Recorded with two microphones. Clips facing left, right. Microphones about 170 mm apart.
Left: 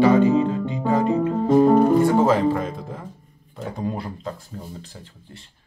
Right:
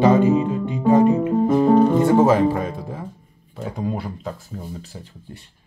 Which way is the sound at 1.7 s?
5° left (ahead or behind).